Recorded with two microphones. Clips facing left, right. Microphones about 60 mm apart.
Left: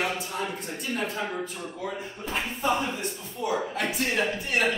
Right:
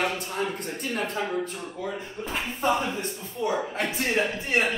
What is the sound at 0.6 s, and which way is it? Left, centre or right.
Speech, right.